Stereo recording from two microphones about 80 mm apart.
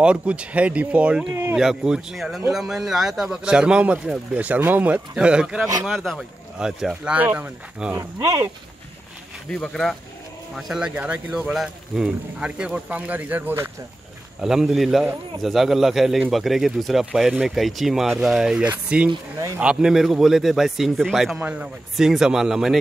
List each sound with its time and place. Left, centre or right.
0.0 s a man's voice: centre
5.1 s speech: centre
5.9 s a man's voice: centre
6.6 s speech: centre
7.2 s speech: right
7.9 s speech: right
9.5 s speech: centre
10.5 s a man's voice: centre
11.0 s speech: centre
11.5 s speech: centre; by 13.6 s right
14.4 s a man's voice: centre
21.4 s speech: right
21.9 s speech: centre